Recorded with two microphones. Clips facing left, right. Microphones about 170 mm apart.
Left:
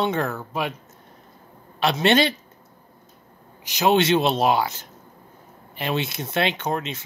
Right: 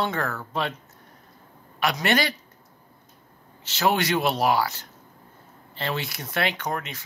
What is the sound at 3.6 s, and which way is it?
Speech, 15° left (ahead or behind).